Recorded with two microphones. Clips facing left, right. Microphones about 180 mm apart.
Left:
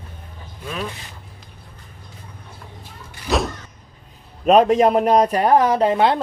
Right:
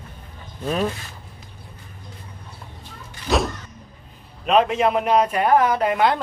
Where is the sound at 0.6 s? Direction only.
40° right (ahead or behind).